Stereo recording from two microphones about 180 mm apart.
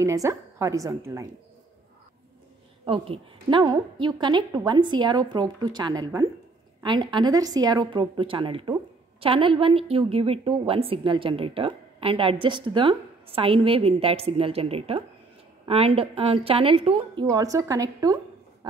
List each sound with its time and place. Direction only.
0.0 s a woman's voice: 15° right (ahead or behind)
2.8 s a woman's voice: 30° right (ahead or behind)